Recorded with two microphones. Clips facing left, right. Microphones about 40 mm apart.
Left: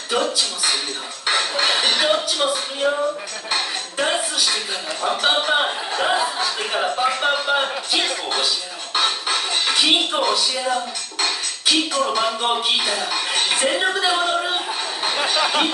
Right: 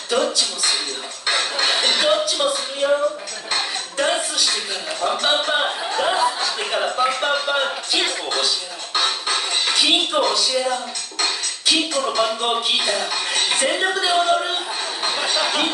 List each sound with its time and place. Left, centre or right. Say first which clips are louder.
0.1 s speech: right 1 dB; centre
8.9 s speech: left 1 dB; centre